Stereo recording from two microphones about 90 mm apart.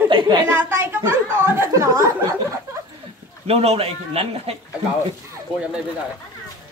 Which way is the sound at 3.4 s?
90° right.